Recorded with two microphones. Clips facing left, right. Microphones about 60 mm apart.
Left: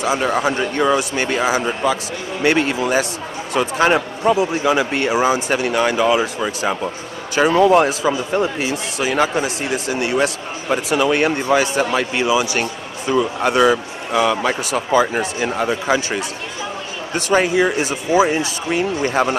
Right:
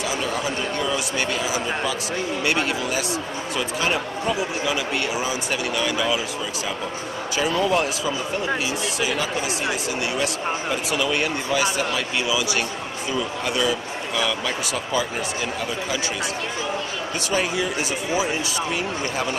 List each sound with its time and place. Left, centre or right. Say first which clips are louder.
0.0 s speech: left 7 dB; left
17.3 s speech: left 9 dB; left
18.1 s speech: left 10 dB; left